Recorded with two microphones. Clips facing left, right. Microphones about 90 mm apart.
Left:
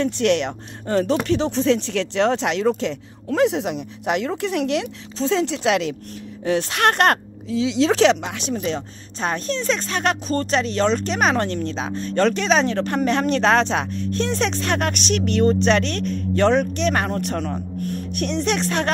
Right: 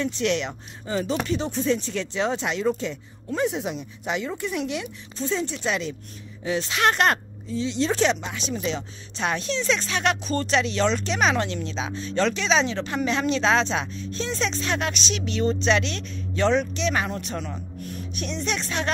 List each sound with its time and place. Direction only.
0.0 s speech: 60° left (ahead or behind); by 5.9 s 90° left
6.4 s speech: 60° left (ahead or behind)
7.4 s speech: 90° left; by 18.9 s 60° left (ahead or behind)